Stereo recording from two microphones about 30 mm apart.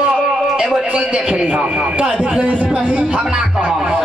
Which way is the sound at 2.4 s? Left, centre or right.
Right.